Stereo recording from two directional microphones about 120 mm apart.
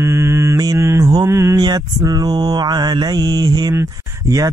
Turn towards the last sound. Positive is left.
turn(degrees=-30)  # may be behind; listen again after turning